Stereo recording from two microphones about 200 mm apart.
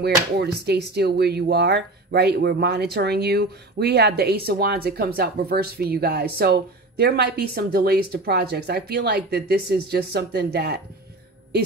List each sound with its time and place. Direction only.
0.4 s speech: 55° right (ahead or behind)